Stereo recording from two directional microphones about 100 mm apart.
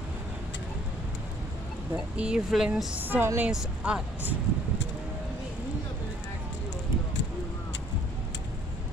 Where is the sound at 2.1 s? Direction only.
10° right (ahead or behind).